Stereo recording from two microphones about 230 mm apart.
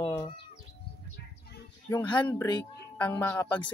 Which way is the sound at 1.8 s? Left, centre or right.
Centre.